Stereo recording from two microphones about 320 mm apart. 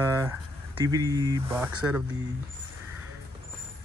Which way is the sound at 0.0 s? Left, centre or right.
Centre.